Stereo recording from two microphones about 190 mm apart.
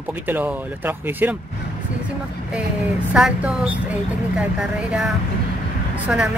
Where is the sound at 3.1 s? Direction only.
5° right (ahead or behind).